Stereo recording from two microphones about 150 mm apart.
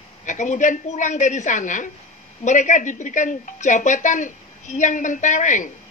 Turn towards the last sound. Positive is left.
turn(degrees=55)  # may be behind; listen again after turning